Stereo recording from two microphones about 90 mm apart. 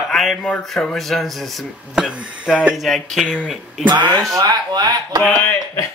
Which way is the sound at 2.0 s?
10° right (ahead or behind).